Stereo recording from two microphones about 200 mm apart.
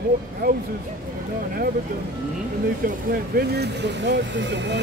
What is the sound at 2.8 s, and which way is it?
Speech, 50° right (ahead or behind).